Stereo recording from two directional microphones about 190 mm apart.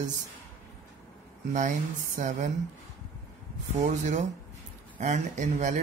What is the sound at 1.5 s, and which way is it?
Speech, 40° right (ahead or behind).